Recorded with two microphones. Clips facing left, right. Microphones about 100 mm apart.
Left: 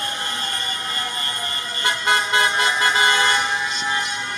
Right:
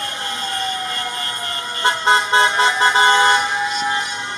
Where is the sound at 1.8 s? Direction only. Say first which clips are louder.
Right 5 dB; 30° right (ahead or behind).